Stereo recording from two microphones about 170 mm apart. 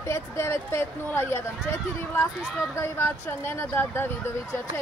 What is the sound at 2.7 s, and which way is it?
Speech, 15° left (ahead or behind).